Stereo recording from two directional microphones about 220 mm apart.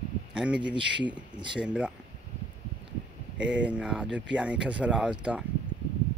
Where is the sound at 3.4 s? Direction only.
5° right (ahead or behind).